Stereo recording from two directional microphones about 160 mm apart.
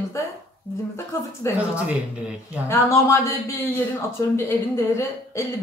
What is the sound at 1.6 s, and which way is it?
Speech, 10° right (ahead or behind).